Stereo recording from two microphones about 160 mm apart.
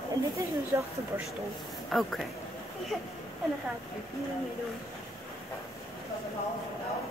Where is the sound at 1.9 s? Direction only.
Centre (ahead or behind).